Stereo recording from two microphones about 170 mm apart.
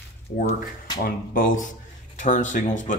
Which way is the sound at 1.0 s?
55° left (ahead or behind).